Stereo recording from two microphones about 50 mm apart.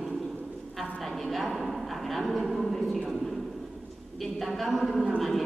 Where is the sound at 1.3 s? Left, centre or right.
Centre.